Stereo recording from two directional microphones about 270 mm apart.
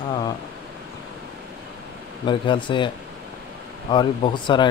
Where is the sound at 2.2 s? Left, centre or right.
Centre.